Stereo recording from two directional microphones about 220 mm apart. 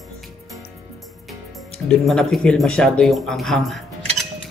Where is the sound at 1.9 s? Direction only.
Centre (ahead or behind).